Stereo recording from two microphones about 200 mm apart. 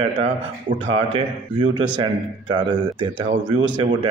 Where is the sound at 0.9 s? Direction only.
20° right (ahead or behind).